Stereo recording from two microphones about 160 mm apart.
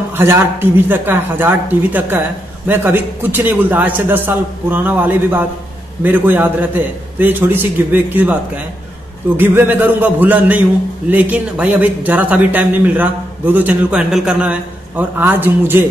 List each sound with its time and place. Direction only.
0.2 s speech: 15° right (ahead or behind)
9.4 s speech: 15° right (ahead or behind)